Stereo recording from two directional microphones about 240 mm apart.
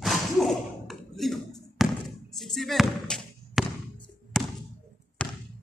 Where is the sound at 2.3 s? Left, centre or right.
Centre.